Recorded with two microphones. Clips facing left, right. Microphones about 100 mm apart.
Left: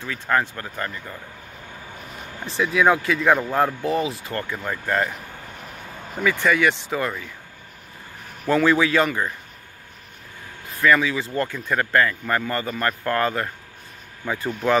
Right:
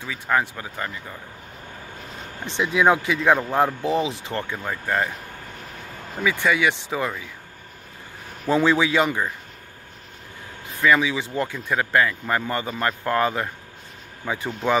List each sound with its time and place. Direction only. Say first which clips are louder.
0.0 s speech: even; 10° right (ahead or behind)
2.4 s speech: even; 25° right (ahead or behind)
4.6 s speech: left 1 dB; 10° right (ahead or behind)
6.2 s speech: left 1 dB; 15° right (ahead or behind)
8.5 s speech: left 1 dB; 20° right (ahead or behind)
10.8 s speech: left 1 dB; 15° right (ahead or behind)